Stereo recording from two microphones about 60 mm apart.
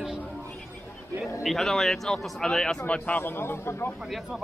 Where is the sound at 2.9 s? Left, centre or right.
Left.